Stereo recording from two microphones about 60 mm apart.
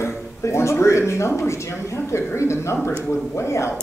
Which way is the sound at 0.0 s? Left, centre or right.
Left.